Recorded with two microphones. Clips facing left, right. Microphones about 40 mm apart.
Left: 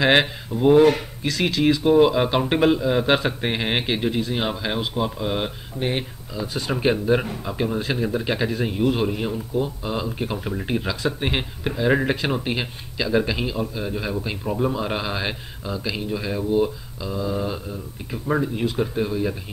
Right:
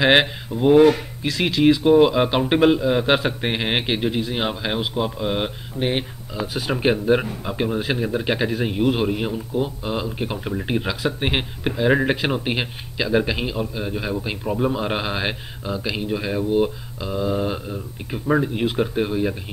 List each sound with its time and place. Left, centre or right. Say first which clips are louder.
0.0 s a man's voice: right 2 dB; centre
18.5 s speech: right 2 dB; right